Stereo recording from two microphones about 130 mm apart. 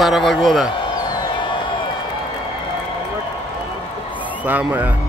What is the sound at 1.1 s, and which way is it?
Music, 40° left (ahead or behind).